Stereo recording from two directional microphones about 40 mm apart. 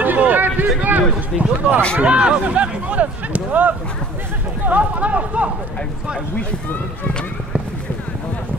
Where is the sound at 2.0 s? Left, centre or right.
Right.